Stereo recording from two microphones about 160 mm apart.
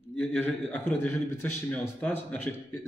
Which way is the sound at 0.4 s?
10° left (ahead or behind).